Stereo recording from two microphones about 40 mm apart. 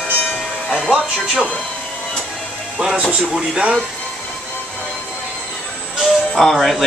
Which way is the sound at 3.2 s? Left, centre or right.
Centre.